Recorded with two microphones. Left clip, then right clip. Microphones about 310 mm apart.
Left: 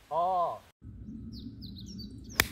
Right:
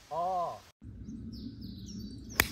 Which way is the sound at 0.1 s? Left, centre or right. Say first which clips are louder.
Left 4 dB; centre.